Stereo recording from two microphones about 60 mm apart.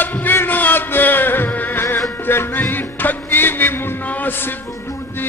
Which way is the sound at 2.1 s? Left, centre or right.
Left.